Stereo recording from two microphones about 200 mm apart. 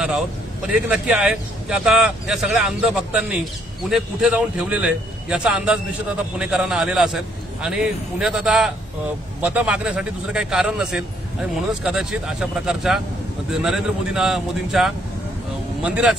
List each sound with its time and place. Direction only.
0.8 s a man's voice: 5° right (ahead or behind)